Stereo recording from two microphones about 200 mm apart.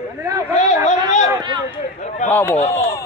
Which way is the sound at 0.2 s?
15° right (ahead or behind).